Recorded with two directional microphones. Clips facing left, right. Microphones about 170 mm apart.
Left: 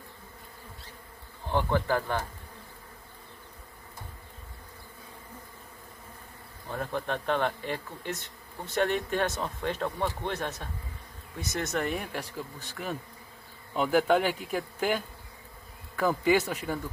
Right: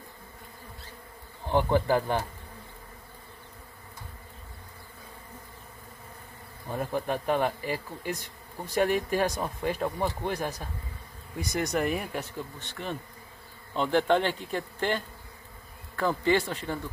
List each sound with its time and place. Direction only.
1.4 s speech: 15° right (ahead or behind)
6.7 s speech: 10° right (ahead or behind); by 16.8 s 5° left (ahead or behind)